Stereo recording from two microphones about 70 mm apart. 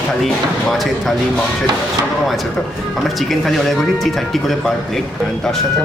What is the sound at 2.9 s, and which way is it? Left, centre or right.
Speech, centre.